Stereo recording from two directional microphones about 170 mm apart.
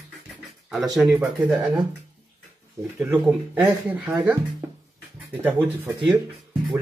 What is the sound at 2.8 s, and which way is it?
Speech, 15° right (ahead or behind).